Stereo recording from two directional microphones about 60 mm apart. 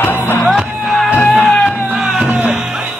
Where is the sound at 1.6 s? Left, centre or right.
Centre.